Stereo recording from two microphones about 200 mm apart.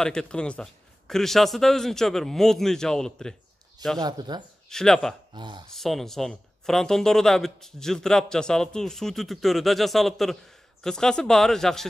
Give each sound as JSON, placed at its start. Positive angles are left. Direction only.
{"t": 0.0, "sound": "speech", "side_deg": 5}
{"t": 4.0, "sound": "speech", "side_deg": -20}
{"t": 4.6, "sound": "speech", "side_deg": 5}
{"t": 5.3, "sound": "speech", "side_deg": -20}
{"t": 5.8, "sound": "speech", "side_deg": 0}